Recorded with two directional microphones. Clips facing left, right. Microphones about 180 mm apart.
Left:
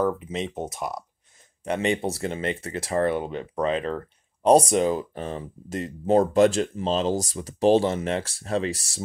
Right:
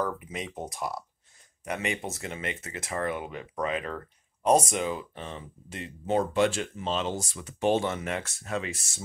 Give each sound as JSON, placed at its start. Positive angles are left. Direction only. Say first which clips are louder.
{"t": 0.0, "sound": "speech", "louder": "left 7 dB", "side_deg": 25}